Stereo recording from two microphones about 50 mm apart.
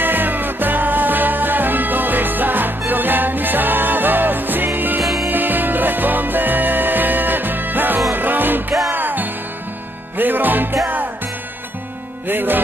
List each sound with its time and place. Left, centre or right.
0.0 s music: right
12.3 s music: right